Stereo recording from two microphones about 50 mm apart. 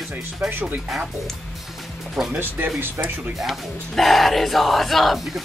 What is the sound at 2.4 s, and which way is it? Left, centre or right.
Speech, right.